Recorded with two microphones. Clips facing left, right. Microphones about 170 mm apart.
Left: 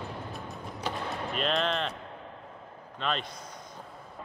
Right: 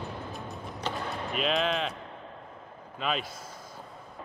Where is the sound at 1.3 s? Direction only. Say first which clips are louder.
Right 1 dB; 5° right (ahead or behind).